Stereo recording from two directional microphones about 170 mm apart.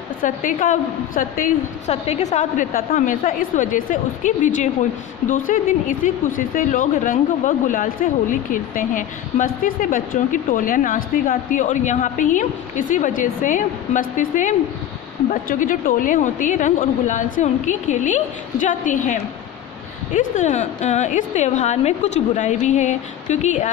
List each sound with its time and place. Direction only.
0.2 s speech: 50° left (ahead or behind)
2.0 s speech: 40° left (ahead or behind)